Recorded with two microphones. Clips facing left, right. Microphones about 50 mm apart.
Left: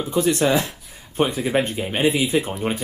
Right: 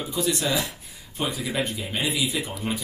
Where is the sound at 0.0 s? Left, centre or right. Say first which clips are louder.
Left 7 dB; left.